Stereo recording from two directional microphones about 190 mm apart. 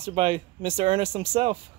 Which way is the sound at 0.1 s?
30° right (ahead or behind).